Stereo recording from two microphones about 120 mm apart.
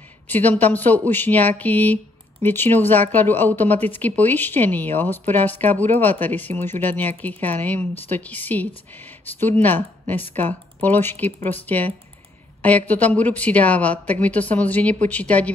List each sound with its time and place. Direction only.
0.3 s speech: 15° left (ahead or behind)